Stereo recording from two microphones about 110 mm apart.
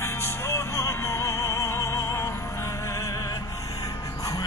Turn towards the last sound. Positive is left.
turn(degrees=30)  # may be behind; listen again after turning